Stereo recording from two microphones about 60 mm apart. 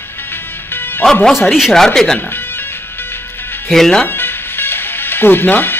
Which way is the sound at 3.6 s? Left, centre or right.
Centre.